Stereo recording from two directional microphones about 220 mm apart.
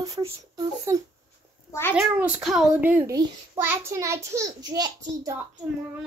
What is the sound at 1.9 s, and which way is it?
A child's voice, 5° right (ahead or behind).